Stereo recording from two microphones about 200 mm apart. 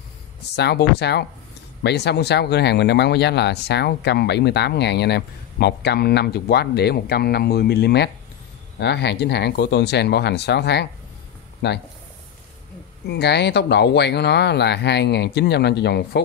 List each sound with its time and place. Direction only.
0.6 s speech: 55° left (ahead or behind)
13.0 s speech: 60° left (ahead or behind)